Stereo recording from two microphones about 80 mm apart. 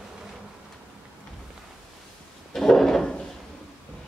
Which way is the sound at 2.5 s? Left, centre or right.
Centre.